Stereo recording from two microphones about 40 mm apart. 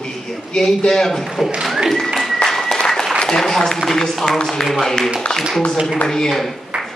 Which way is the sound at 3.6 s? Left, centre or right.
Centre.